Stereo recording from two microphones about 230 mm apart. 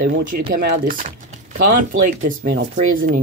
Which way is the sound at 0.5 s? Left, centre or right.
Right.